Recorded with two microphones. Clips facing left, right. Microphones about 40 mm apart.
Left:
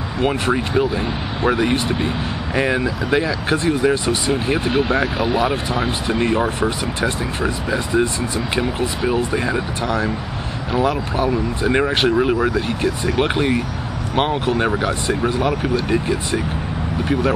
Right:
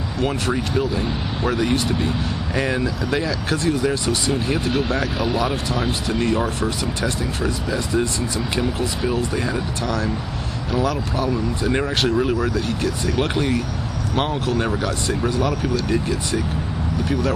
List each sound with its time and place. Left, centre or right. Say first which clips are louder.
0.2 s speech: left 4 dB; left